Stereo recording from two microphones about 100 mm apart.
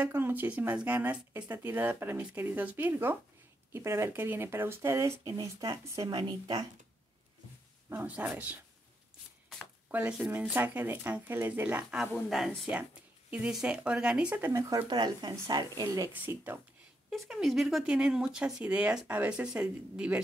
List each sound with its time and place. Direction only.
0.0 s speech: 15° right (ahead or behind); by 6.1 s 35° right (ahead or behind)
6.1 s speech: 50° right (ahead or behind)
7.9 s speech: 20° right (ahead or behind)
9.8 s speech: 15° right (ahead or behind)
13.3 s speech: 10° right (ahead or behind)
14.4 s speech: 30° right (ahead or behind)
14.8 s speech: 45° right (ahead or behind)
16.1 s speech: 20° right (ahead or behind)
17.1 s speech: centre (ahead or behind)